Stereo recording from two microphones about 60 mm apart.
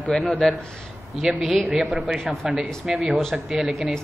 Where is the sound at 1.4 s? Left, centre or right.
Centre.